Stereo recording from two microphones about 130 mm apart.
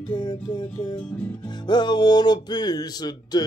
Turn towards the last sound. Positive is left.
turn(degrees=30)  # may be behind; listen again after turning